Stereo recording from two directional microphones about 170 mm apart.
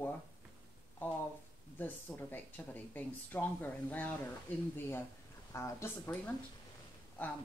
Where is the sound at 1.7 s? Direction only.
10° left (ahead or behind).